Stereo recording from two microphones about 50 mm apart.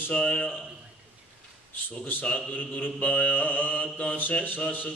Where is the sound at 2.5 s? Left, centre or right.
Left.